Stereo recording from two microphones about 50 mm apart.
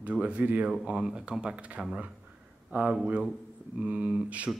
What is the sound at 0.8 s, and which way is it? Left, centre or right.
Speech, centre.